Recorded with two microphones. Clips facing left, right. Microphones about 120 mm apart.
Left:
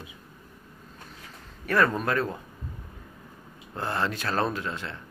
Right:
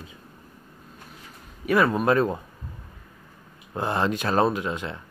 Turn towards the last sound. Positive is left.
turn(degrees=-15)  # may be behind; listen again after turning